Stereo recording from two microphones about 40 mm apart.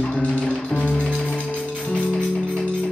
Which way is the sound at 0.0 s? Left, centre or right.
Left.